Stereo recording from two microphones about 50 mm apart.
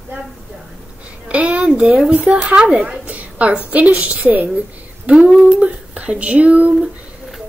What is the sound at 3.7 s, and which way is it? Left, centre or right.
Speech, right.